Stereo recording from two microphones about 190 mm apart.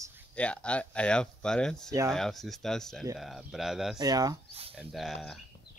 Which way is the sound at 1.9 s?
15° right (ahead or behind).